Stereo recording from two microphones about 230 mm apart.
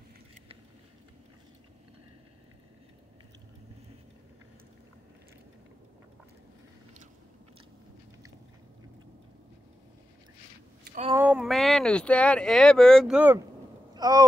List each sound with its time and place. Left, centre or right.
11.1 s speech: centre
13.9 s speech: centre